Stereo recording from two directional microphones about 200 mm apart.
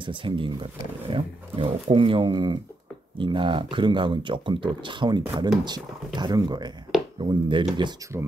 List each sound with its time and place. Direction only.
0.0 s speech: 25° right (ahead or behind)